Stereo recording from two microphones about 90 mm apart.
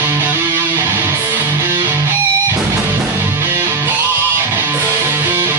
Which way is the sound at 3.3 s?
25° right (ahead or behind).